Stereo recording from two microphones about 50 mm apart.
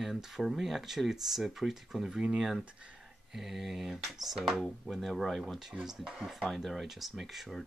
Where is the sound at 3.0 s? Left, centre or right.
Centre.